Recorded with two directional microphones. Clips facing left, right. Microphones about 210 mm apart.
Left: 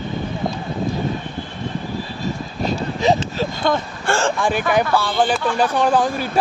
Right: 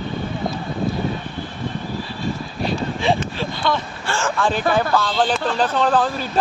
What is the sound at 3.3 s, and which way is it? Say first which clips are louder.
Speech: left 3 dB; 50° left (ahead or behind).